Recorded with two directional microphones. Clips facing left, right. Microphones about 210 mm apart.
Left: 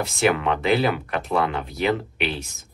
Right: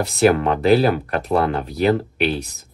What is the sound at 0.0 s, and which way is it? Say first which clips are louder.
Speech: right 5 dB; 40° right (ahead or behind).